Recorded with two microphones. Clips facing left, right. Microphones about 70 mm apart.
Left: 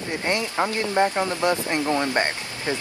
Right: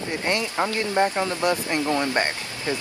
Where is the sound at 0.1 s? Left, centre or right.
Left.